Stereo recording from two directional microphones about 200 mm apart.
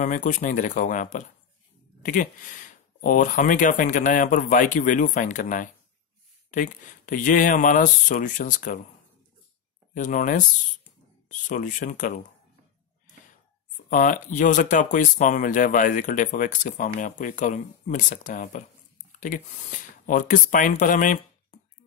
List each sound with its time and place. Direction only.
0.0 s speech: 40° left (ahead or behind)
9.9 s speech: 40° left (ahead or behind)
13.8 s speech: 40° left (ahead or behind)